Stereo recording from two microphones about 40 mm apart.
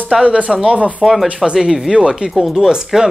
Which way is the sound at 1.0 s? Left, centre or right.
Centre.